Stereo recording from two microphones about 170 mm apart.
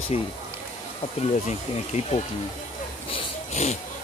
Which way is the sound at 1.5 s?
40° left (ahead or behind).